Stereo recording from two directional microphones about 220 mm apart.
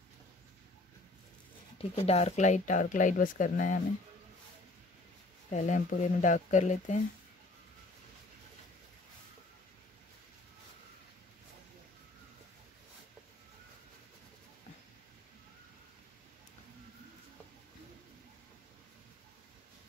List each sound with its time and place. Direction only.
1.8 s speech: 30° left (ahead or behind)
5.5 s speech: 35° left (ahead or behind)